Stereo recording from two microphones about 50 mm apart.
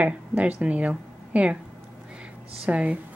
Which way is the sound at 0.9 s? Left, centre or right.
Right.